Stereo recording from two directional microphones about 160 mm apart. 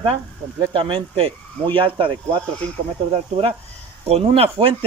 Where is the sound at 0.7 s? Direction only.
35° right (ahead or behind).